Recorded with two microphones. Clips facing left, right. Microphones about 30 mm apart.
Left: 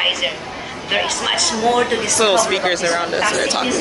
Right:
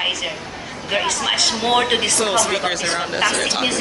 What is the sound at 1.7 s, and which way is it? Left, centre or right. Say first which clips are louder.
Speech: left 1 dB; right.